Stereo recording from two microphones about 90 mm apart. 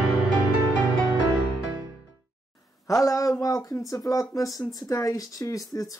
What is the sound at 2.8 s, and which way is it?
Speech, 40° left (ahead or behind).